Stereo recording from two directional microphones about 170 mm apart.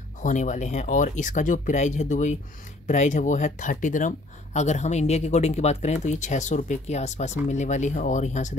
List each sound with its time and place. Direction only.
0.2 s speech: 45° left (ahead or behind)